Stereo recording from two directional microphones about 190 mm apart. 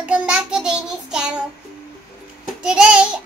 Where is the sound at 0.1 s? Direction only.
5° right (ahead or behind).